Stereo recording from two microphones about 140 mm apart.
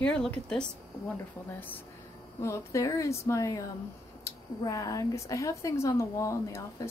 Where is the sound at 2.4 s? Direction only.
20° left (ahead or behind).